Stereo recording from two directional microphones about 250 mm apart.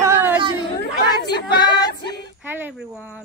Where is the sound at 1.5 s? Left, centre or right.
Centre.